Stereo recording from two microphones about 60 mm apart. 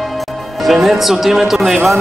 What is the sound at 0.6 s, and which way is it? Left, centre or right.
Speech, centre.